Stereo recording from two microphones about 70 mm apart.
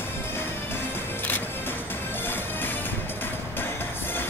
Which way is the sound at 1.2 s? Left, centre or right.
Left.